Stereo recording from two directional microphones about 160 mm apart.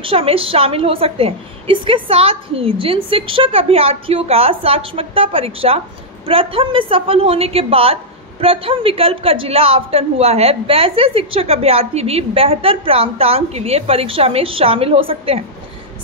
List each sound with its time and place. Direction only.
0.0 s a woman's voice: 35° right (ahead or behind)